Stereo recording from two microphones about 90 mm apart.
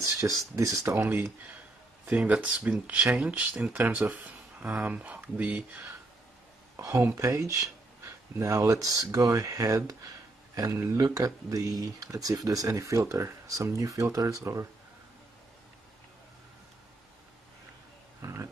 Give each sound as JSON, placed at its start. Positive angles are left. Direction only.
{"t": 0.0, "sound": "speech", "side_deg": -35}
{"t": 1.0, "sound": "speech", "side_deg": -5}
{"t": 6.8, "sound": "speech", "side_deg": -35}
{"t": 18.2, "sound": "a sound", "side_deg": -30}